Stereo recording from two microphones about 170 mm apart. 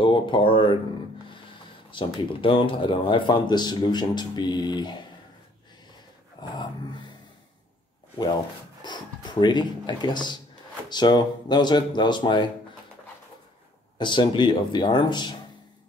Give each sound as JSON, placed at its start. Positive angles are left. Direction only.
{"t": 0.0, "sound": "speech", "side_deg": 30}
{"t": 1.9, "sound": "a man's voice", "side_deg": 30}
{"t": 6.4, "sound": "a man's voice", "side_deg": 25}
{"t": 8.8, "sound": "a man's voice", "side_deg": 25}
{"t": 13.9, "sound": "a man's voice", "side_deg": 25}